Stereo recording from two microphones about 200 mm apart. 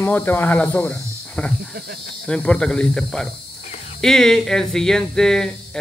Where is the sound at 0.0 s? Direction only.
10° left (ahead or behind).